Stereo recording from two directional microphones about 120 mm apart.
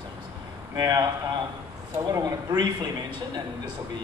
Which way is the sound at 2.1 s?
35° right (ahead or behind).